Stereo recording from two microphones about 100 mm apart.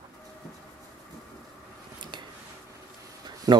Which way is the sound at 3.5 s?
40° right (ahead or behind).